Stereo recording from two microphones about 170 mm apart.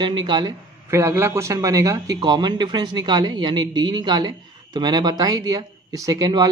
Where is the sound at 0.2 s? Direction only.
25° right (ahead or behind).